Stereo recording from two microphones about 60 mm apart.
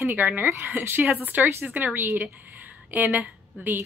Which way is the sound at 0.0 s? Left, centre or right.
Right.